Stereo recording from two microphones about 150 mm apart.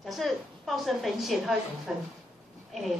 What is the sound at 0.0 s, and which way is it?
A woman's voice, centre (ahead or behind).